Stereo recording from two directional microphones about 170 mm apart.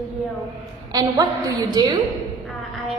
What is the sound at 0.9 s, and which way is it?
A woman's voice, 20° right (ahead or behind).